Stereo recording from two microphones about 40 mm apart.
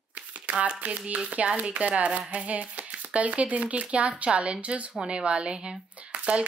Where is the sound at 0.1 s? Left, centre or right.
Right.